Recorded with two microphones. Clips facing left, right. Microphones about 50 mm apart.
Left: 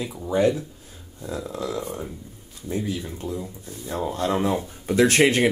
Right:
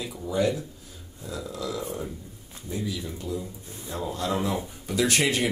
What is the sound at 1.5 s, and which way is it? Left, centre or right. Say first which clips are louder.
Speech: left 1 dB; left.